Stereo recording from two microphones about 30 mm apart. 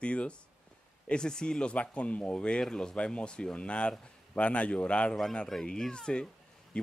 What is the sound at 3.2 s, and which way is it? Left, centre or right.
Speech, left.